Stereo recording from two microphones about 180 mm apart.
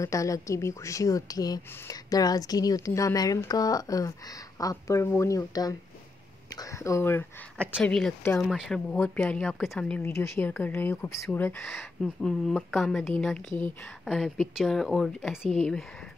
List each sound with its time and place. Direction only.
0.0 s speech: 15° left (ahead or behind)